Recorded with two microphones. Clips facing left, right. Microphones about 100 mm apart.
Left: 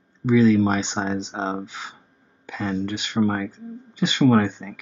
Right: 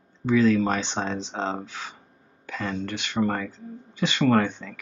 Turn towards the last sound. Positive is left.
turn(degrees=15)  # may be behind; listen again after turning